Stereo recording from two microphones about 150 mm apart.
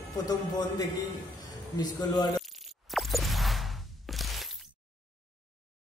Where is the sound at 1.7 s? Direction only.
25° left (ahead or behind).